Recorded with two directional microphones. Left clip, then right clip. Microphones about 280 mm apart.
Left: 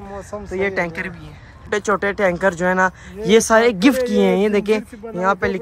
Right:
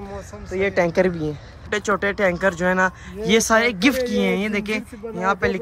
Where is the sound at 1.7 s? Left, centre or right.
Centre.